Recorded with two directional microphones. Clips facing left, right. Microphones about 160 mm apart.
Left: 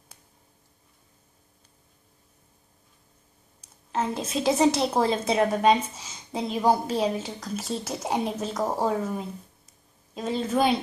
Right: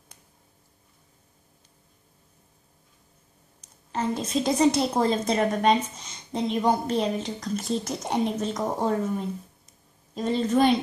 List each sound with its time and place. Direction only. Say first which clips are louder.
3.6 s a woman's voice: even; centre (ahead or behind)